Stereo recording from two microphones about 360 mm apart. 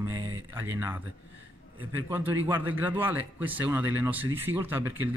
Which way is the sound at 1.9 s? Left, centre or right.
Centre.